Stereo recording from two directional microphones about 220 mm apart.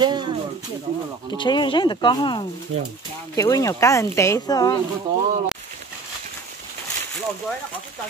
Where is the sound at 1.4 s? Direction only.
20° left (ahead or behind).